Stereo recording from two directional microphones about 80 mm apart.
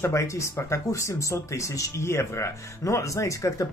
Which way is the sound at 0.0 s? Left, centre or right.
Left.